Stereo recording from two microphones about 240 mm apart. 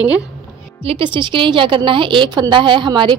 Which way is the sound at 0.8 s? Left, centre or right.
Right.